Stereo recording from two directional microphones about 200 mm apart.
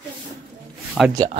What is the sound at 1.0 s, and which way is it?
Speech, centre (ahead or behind).